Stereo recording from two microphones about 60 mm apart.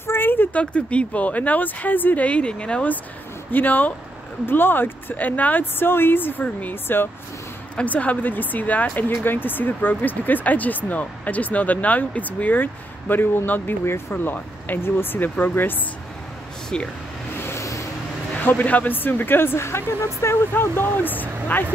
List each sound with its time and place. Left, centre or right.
0.0 s a sound: left
0.6 s speech: left
7.7 s speech: left
16.7 s speech: centre
17.4 s vehicle: left
18.4 s speech: left
20.5 s speech: left